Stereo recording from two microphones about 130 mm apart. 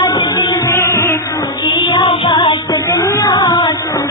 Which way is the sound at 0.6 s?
15° left (ahead or behind).